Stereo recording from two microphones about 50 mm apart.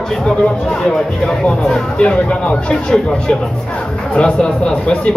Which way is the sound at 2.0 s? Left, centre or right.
Left.